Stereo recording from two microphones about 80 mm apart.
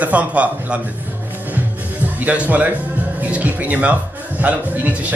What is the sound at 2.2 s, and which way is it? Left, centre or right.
Speech, centre.